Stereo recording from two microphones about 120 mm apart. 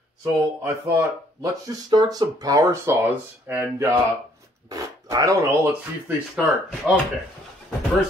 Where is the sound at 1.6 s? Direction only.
35° right (ahead or behind).